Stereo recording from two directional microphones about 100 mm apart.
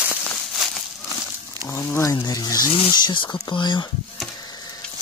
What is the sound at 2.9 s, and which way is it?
Speech, 50° left (ahead or behind).